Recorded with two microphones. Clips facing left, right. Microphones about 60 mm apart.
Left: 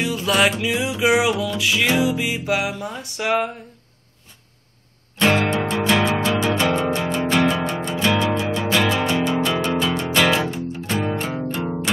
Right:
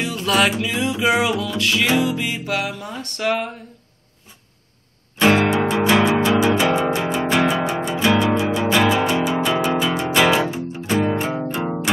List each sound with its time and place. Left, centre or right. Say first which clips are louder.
0.0 s music: even; centre
5.1 s music: right 3 dB; centre